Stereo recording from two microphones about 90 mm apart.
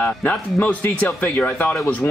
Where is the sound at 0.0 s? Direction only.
15° left (ahead or behind).